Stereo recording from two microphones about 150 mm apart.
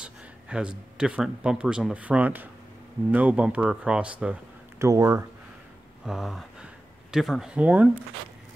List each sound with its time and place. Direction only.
0.0 s speech: 5° right (ahead or behind)
4.8 s speech: 20° right (ahead or behind)
6.0 s speech: centre (ahead or behind)